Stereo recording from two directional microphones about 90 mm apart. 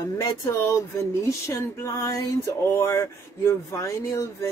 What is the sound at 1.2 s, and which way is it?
A woman's voice, 35° left (ahead or behind).